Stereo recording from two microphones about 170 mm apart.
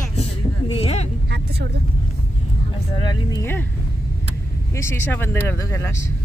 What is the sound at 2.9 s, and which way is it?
Speech, 25° left (ahead or behind).